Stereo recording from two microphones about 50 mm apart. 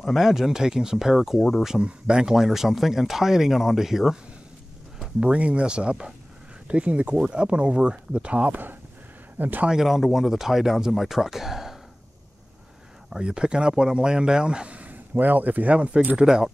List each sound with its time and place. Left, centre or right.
0.0 s speech: centre
1.8 s speech: centre
5.2 s speech: right
9.7 s speech: centre
13.1 s speech: centre
16.2 s speech: centre